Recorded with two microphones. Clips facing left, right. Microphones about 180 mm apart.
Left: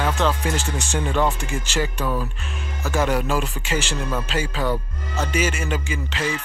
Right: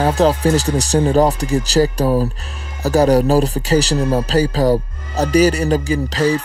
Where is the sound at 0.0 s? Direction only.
35° right (ahead or behind).